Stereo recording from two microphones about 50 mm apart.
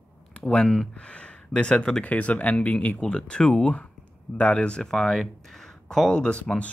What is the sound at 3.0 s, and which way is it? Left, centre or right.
Speech, centre.